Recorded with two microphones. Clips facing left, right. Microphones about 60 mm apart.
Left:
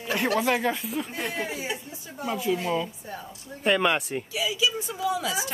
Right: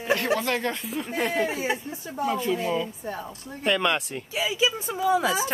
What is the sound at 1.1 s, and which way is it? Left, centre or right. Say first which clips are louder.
Speech: right 5 dB; right.